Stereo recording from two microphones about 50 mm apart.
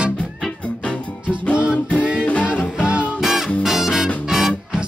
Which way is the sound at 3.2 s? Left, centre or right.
Centre.